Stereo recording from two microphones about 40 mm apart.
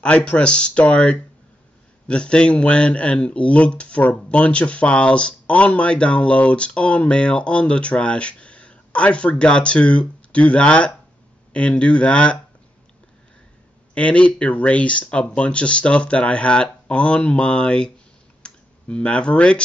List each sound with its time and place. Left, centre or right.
0.0 s speech: left
13.9 s speech: left
18.4 s clicking: left